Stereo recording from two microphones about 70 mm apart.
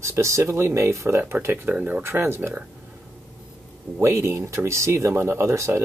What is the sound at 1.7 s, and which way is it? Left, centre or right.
Speech, centre.